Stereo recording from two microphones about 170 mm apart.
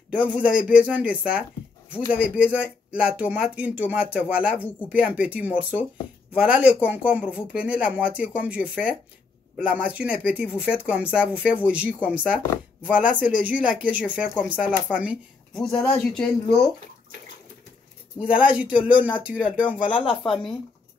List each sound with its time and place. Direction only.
0.1 s speech: 10° right (ahead or behind)
18.2 s speech: 5° right (ahead or behind)
19.9 s speech: 30° left (ahead or behind)